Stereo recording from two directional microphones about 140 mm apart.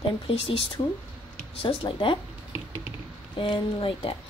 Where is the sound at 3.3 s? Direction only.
40° left (ahead or behind).